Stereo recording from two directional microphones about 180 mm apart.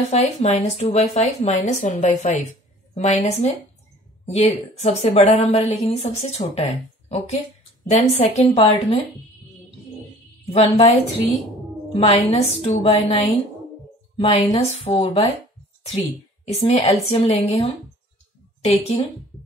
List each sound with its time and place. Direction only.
0.1 s a woman's voice: 40° left (ahead or behind)
10.5 s a woman's voice: 35° left (ahead or behind)